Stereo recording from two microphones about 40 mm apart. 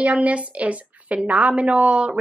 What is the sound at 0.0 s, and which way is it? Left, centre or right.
A woman's voice, right.